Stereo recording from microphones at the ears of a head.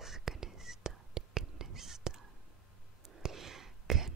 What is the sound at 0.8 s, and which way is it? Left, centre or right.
Whispering, right.